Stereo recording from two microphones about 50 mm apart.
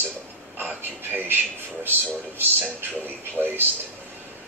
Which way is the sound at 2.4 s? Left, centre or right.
Right.